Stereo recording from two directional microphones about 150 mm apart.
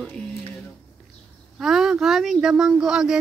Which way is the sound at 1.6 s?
Centre (ahead or behind).